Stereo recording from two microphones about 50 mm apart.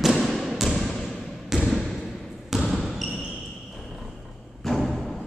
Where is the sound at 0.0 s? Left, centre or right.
Centre.